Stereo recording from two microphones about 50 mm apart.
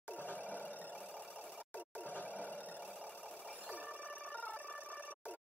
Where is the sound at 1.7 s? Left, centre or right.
Left.